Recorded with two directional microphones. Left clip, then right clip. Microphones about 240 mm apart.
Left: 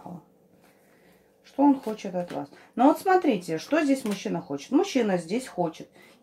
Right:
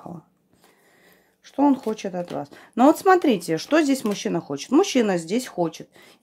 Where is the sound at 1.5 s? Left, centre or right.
Right.